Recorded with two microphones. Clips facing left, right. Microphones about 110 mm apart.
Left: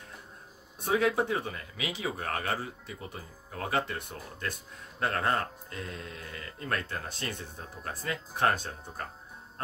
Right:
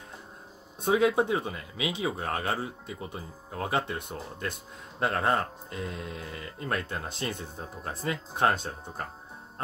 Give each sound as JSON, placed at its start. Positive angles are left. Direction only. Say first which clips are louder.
{"t": 0.8, "sound": "speech", "louder": "right 3 dB", "side_deg": -20}